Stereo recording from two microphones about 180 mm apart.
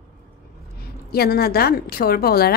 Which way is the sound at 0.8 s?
60° left (ahead or behind).